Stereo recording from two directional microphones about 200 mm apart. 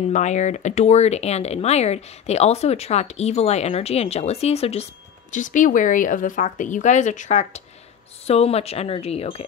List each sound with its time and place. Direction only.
0.1 s speech: 35° left (ahead or behind)